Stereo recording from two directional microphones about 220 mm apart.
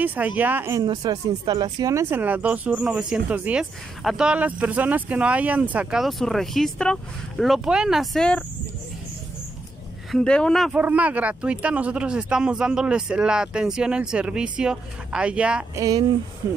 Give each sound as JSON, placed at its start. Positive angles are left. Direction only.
{"t": 0.0, "sound": "speech", "side_deg": -5}
{"t": 10.1, "sound": "speech", "side_deg": 5}
{"t": 15.8, "sound": "speech", "side_deg": -15}